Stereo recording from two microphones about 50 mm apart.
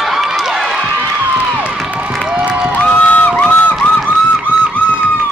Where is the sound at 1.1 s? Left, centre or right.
Right.